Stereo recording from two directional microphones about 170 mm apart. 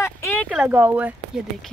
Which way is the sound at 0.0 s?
15° left (ahead or behind).